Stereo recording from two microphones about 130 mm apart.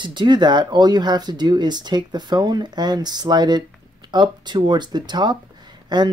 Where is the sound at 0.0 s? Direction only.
35° right (ahead or behind).